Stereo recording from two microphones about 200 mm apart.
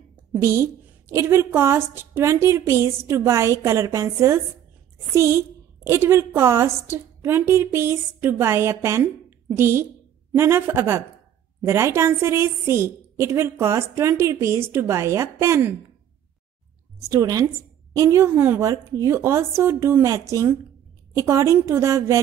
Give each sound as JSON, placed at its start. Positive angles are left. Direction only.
{"t": 0.4, "sound": "a woman's voice", "side_deg": -15}
{"t": 17.1, "sound": "a woman's voice", "side_deg": -15}